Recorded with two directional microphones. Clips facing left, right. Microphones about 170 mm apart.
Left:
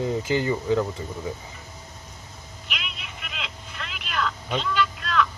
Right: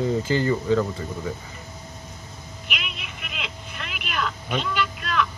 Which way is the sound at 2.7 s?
15° right (ahead or behind).